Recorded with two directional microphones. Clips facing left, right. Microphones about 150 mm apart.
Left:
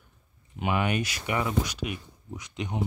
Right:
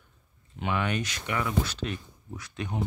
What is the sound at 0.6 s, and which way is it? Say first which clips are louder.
Speech: left 2 dB; 10° left (ahead or behind).